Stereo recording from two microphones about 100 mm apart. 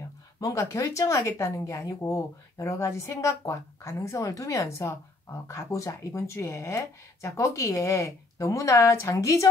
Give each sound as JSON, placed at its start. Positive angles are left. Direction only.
{"t": 0.4, "sound": "speech", "side_deg": 35}